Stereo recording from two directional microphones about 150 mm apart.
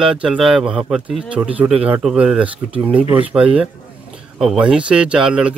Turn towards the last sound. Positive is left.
turn(degrees=-5)  # may be behind; listen again after turning